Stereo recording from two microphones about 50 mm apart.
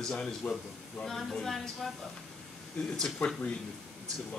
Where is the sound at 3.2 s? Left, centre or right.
Left.